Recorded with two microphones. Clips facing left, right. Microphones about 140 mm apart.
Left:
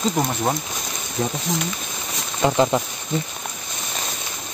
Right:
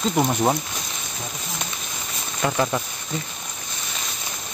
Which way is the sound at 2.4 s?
25° left (ahead or behind).